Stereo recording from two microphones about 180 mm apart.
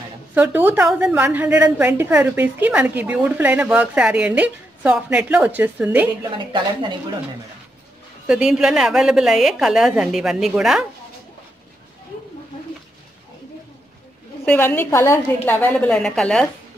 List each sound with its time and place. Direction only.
0.3 s a woman's voice: 10° right (ahead or behind)
6.3 s speech: 25° right (ahead or behind)
8.3 s a woman's voice: 5° right (ahead or behind)
14.4 s a woman's voice: 10° left (ahead or behind)